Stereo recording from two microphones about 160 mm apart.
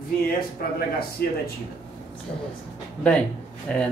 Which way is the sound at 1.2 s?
70° left (ahead or behind).